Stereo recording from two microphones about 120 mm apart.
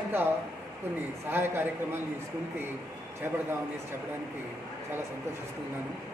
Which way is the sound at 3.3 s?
20° right (ahead or behind).